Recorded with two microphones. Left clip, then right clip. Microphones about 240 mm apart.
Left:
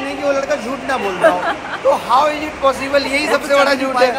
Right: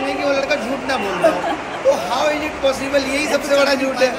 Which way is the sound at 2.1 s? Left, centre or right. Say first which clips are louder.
Left 4 dB; centre.